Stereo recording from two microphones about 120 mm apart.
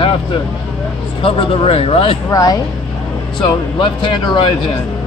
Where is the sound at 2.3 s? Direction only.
30° left (ahead or behind).